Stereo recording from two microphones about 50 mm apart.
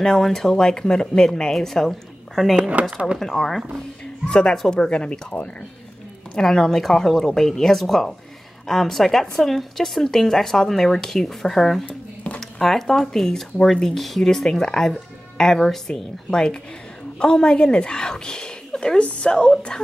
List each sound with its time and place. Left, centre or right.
0.0 s speech: centre
2.8 s speech: right
3.2 s speech: centre
4.0 s speech: centre
6.3 s speech: centre